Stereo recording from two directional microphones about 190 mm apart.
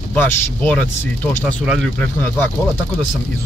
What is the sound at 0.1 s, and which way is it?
Speech, 10° left (ahead or behind).